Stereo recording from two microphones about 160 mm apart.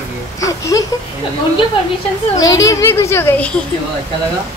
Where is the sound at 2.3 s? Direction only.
20° left (ahead or behind).